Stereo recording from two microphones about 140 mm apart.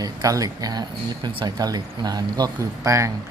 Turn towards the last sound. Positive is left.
turn(degrees=-25)  # may be behind; listen again after turning